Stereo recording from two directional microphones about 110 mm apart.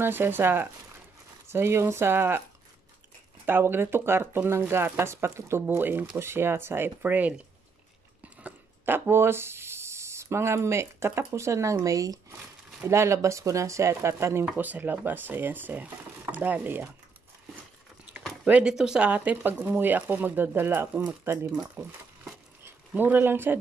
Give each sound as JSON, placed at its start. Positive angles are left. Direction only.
{"t": 0.0, "sound": "speech", "side_deg": -20}
{"t": 3.4, "sound": "speech", "side_deg": -20}
{"t": 8.4, "sound": "a sound", "side_deg": -15}
{"t": 11.3, "sound": "speech", "side_deg": -25}
{"t": 14.4, "sound": "speech", "side_deg": -15}
{"t": 18.4, "sound": "speech", "side_deg": -10}
{"t": 22.9, "sound": "speech", "side_deg": -15}